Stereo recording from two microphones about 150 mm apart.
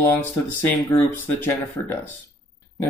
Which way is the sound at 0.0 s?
15° left (ahead or behind).